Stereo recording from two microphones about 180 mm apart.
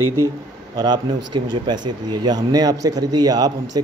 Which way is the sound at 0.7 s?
25° right (ahead or behind).